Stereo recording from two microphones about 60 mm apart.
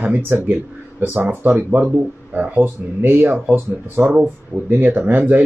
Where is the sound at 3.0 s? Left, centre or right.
Right.